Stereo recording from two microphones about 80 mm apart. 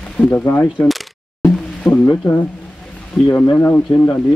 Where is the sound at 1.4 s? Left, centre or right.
Centre.